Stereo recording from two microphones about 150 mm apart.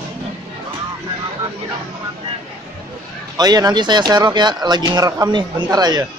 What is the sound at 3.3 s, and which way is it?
Speech, 25° right (ahead or behind).